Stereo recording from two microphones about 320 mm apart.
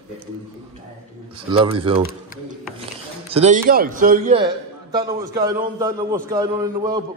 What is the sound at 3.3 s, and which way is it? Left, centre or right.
A man's voice, right.